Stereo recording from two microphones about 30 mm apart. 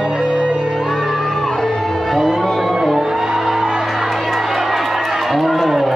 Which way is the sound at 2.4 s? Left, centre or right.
Centre.